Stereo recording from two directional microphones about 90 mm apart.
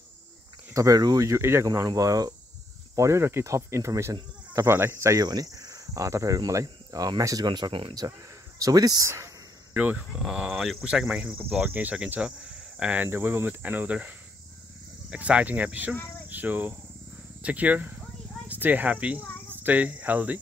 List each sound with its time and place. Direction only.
0.7 s cricket: 45° right (ahead or behind)
1.7 s speech: 45° right (ahead or behind)
3.0 s cricket: 30° right (ahead or behind)
4.6 s cricket: 25° right (ahead or behind)
7.4 s speech: 55° right (ahead or behind); by 9.3 s 35° right (ahead or behind)
9.8 s speech: 15° right (ahead or behind)
10.1 s speech: 5° right (ahead or behind)